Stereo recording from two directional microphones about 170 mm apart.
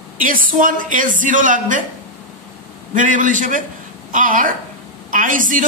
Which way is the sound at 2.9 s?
50° right (ahead or behind).